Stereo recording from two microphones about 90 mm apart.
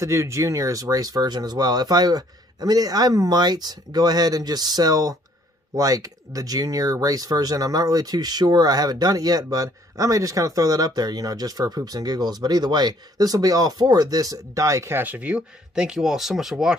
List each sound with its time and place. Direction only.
0.0 s speech: 30° right (ahead or behind)
15.0 s speech: 15° right (ahead or behind)